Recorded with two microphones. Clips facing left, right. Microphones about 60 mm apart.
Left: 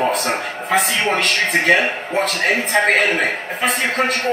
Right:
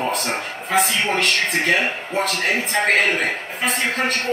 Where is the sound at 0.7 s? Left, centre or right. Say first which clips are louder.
Left 2 dB; centre.